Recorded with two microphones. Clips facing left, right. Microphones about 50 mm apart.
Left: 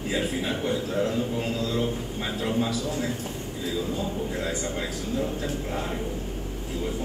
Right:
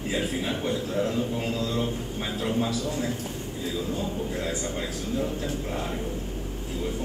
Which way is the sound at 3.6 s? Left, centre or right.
Left.